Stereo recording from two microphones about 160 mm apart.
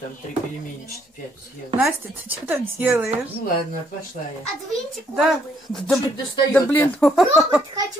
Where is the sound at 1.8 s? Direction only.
15° right (ahead or behind).